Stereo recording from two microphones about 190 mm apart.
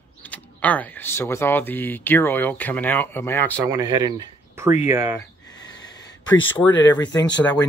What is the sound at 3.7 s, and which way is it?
Speech, 20° right (ahead or behind).